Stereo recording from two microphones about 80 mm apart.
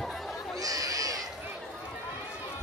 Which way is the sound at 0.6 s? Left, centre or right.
Right.